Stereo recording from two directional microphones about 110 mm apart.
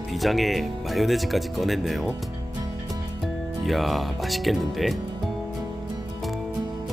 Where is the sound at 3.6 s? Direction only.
Centre (ahead or behind).